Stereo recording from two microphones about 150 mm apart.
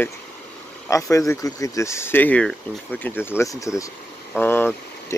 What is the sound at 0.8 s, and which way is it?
Speech, 20° left (ahead or behind).